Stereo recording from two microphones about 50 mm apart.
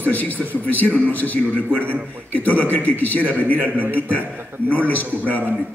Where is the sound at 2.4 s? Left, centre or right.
Left.